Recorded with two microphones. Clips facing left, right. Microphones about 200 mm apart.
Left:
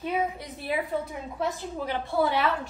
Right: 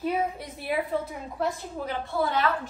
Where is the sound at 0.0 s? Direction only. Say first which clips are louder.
Right 1 dB; centre (ahead or behind).